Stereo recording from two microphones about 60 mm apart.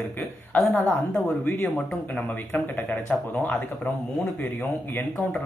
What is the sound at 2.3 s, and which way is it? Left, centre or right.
Speech, left.